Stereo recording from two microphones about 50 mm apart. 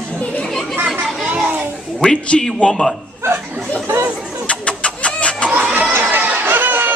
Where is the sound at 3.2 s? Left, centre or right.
Right.